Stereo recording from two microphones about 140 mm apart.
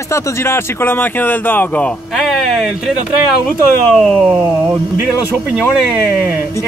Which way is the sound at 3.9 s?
5° left (ahead or behind).